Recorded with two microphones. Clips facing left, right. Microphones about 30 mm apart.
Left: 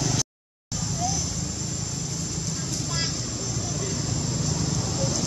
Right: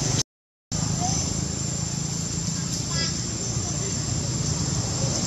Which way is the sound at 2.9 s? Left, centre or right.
Centre.